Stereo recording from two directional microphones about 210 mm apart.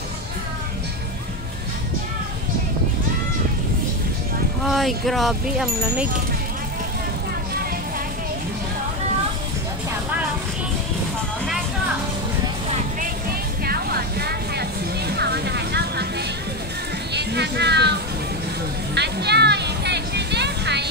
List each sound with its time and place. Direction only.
4.6 s speech: centre (ahead or behind)
13.7 s a sound: 45° right (ahead or behind)
15.1 s music: 50° right (ahead or behind)
18.9 s music: 50° right (ahead or behind)